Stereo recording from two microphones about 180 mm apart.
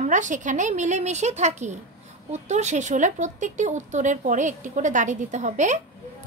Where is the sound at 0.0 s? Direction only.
45° right (ahead or behind).